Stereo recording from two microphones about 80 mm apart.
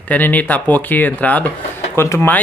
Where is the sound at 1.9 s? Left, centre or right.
Left.